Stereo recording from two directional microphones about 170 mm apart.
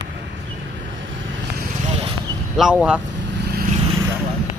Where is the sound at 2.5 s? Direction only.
5° right (ahead or behind).